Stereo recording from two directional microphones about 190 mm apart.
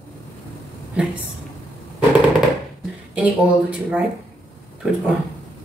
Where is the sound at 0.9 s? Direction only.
5° right (ahead or behind).